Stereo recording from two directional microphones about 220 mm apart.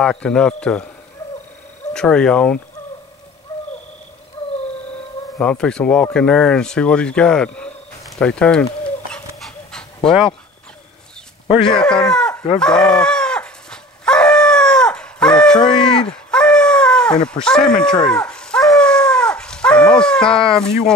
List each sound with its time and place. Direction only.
0.0 s speech: 5° left (ahead or behind)
2.0 s speech: 5° left (ahead or behind)
5.4 s speech: 5° left (ahead or behind)
9.4 s dog: 5° left (ahead or behind)
11.7 s speech: 5° left (ahead or behind)
12.5 s chicken: 5° left (ahead or behind)
15.6 s speech: 20° left (ahead or behind)
16.3 s a sound: 5° left (ahead or behind)
20.4 s speech: 5° left (ahead or behind)